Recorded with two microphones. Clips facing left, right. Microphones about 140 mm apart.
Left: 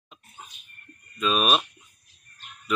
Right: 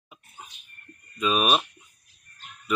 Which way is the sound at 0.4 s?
10° right (ahead or behind).